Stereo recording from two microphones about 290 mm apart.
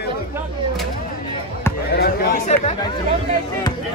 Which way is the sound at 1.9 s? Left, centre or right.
Left.